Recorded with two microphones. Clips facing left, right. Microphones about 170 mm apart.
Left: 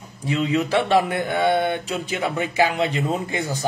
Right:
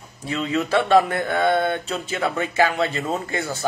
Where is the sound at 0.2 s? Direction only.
15° left (ahead or behind).